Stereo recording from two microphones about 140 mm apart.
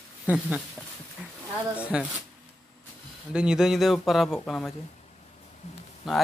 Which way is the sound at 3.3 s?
5° right (ahead or behind).